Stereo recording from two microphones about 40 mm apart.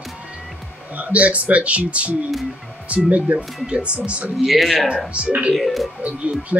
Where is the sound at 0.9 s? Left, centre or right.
Right.